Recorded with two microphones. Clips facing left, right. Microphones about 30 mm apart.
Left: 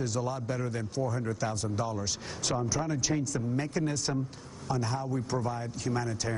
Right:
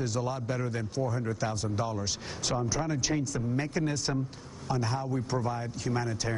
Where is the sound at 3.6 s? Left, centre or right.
Right.